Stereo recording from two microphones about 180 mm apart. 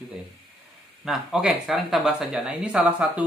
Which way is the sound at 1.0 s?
5° right (ahead or behind).